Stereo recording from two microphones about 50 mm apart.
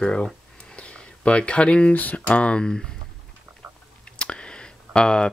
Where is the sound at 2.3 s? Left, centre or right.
Left.